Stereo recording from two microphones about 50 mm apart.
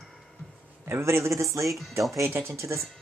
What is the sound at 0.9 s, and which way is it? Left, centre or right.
Speech, right.